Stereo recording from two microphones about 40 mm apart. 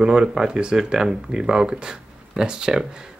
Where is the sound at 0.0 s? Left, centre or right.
Centre.